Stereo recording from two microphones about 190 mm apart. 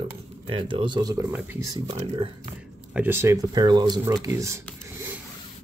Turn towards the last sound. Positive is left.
turn(degrees=-15)  # may be behind; listen again after turning